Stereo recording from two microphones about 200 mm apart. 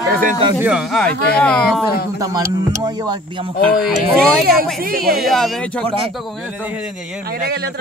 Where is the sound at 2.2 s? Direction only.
15° right (ahead or behind).